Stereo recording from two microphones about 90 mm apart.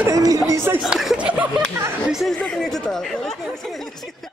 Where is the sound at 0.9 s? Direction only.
5° right (ahead or behind).